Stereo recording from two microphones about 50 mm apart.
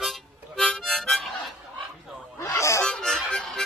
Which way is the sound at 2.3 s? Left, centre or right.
Left.